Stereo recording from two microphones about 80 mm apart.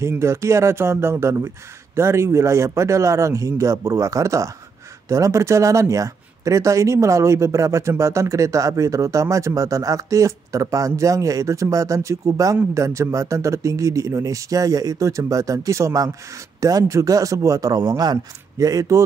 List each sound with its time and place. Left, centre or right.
0.0 s speech: right